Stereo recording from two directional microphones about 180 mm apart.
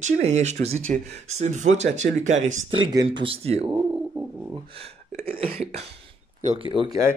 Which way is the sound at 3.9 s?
5° right (ahead or behind).